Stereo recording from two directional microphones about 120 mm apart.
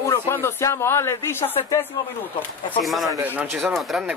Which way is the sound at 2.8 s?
Centre (ahead or behind).